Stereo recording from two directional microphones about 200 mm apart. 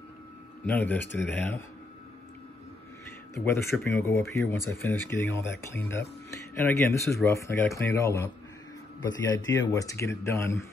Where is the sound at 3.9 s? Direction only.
15° left (ahead or behind).